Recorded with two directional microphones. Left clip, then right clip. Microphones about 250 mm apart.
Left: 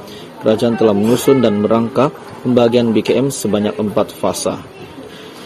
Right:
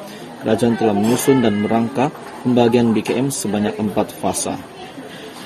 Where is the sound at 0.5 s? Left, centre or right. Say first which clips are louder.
Left 4 dB; centre.